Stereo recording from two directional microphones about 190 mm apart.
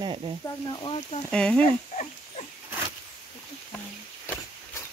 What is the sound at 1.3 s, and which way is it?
Speech, 5° left (ahead or behind).